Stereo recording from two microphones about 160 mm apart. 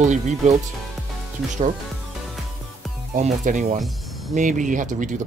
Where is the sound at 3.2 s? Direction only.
50° right (ahead or behind).